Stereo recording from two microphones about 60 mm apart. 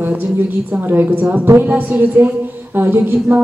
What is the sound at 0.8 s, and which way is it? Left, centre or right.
Speech, right.